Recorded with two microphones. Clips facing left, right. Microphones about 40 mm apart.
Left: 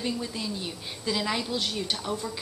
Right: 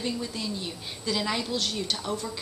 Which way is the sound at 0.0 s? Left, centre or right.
Centre.